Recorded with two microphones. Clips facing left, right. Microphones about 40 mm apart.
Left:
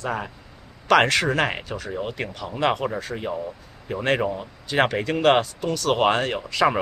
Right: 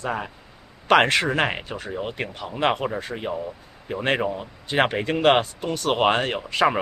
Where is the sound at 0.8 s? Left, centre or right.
Right.